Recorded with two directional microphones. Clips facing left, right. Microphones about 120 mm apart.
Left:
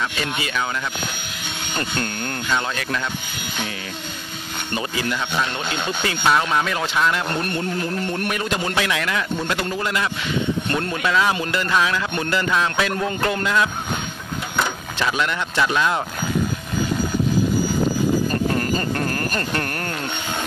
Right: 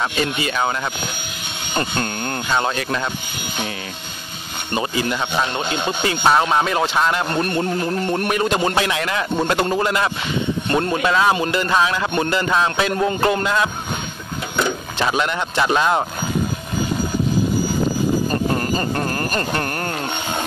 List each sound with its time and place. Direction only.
0.0 s speech: 35° right (ahead or behind)
1.8 s speech: 30° right (ahead or behind)
4.7 s speech: 25° right (ahead or behind)
10.7 s speech: 20° right (ahead or behind)
15.0 s speech: 30° right (ahead or behind)
18.5 s a sound: 25° right (ahead or behind)